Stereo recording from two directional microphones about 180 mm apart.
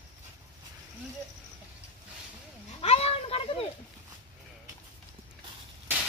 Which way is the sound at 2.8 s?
35° left (ahead or behind).